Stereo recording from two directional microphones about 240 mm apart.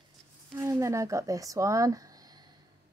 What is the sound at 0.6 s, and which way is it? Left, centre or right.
Speech, centre.